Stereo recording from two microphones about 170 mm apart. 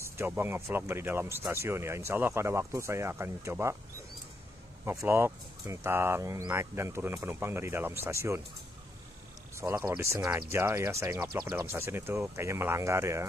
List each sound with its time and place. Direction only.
0.0 s speech: 15° right (ahead or behind)
4.8 s speech: 15° right (ahead or behind)
9.6 s speech: 20° right (ahead or behind)